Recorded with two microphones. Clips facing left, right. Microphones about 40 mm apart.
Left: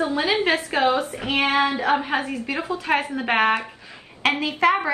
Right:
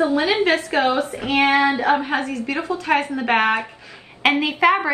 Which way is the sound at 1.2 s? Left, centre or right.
Right.